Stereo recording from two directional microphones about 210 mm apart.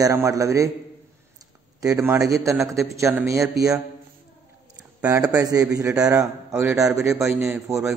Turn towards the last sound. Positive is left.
turn(degrees=-5)  # may be behind; listen again after turning